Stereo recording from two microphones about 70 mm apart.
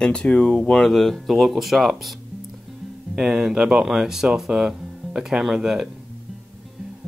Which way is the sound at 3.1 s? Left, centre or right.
Centre.